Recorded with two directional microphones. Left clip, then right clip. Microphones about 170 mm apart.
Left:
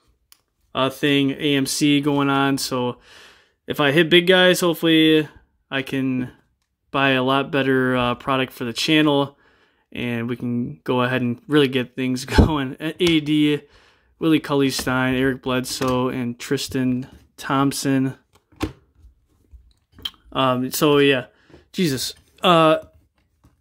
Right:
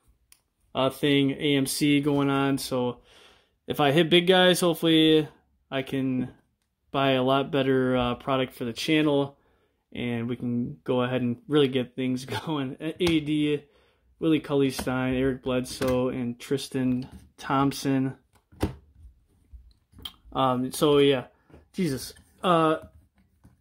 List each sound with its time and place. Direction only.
0.3 s speech: 15° left (ahead or behind)
9.8 s speech: 15° left (ahead or behind)
20.3 s speech: 25° left (ahead or behind)